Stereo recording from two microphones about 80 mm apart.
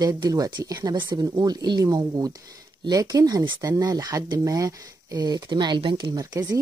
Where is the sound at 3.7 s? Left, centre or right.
Right.